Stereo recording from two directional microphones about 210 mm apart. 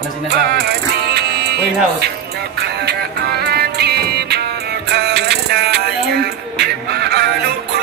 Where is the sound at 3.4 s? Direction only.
50° right (ahead or behind).